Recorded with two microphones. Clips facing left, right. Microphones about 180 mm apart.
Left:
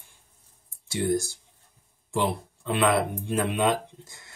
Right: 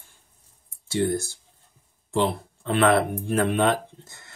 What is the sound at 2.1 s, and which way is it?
Speech, 15° left (ahead or behind).